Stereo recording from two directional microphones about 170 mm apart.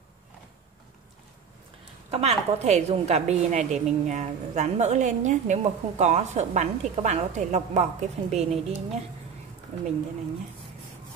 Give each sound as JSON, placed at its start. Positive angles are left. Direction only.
{"t": 2.0, "sound": "a woman's voice", "side_deg": -40}